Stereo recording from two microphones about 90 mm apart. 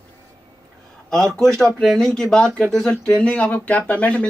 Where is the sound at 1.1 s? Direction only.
5° left (ahead or behind).